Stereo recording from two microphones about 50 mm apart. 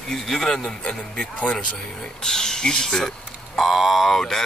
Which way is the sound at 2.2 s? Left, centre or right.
Centre.